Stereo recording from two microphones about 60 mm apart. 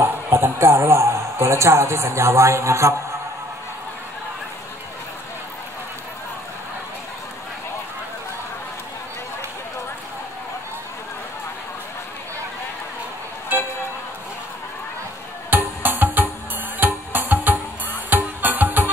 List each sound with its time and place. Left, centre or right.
0.4 s a man's voice: right
15.5 s music: right